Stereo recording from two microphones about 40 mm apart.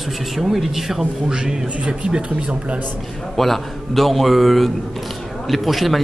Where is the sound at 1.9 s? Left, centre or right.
Right.